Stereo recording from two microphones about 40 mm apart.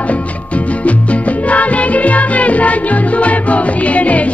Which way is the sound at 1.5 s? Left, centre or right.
Left.